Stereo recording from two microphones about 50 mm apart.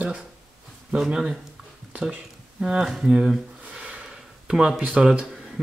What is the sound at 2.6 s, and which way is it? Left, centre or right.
Speech, centre.